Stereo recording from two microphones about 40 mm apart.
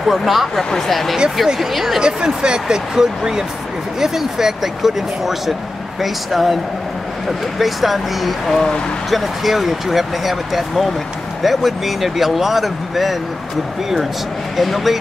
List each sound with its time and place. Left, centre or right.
0.0 s speech: centre
2.0 s speech: centre
14.6 s speech: centre